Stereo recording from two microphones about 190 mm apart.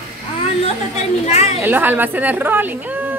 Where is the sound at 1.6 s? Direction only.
10° right (ahead or behind).